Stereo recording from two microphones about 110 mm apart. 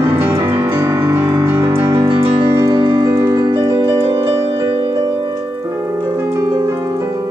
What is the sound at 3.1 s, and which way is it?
Music, 30° right (ahead or behind).